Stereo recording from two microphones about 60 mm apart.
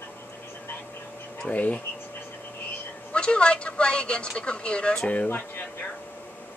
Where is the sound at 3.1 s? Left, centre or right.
Centre.